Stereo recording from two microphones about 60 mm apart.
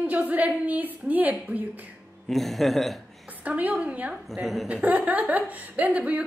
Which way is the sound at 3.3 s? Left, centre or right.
Right.